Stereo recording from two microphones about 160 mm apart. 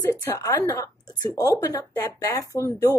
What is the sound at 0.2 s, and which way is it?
A woman's voice, 15° left (ahead or behind).